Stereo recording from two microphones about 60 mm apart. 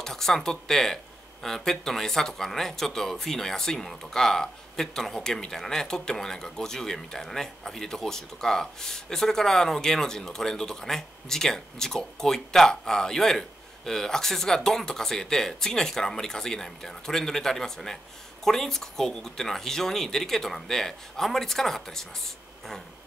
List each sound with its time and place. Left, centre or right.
0.0 s speech: centre